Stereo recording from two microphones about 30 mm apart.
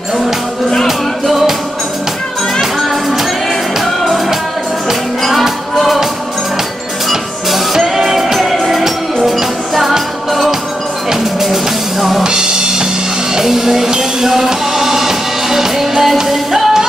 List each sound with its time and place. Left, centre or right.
0.8 s music: centre
3.8 s music: centre
5.4 s music: centre
7.1 s music: centre
11.4 s music: centre
12.2 s music: right
13.3 s music: centre